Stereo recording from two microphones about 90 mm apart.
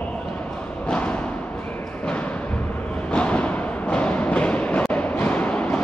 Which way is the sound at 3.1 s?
15° left (ahead or behind).